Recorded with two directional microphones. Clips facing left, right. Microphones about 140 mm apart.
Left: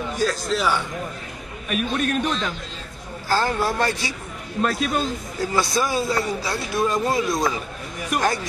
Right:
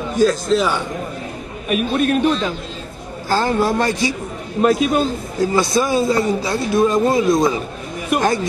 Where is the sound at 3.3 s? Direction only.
20° right (ahead or behind).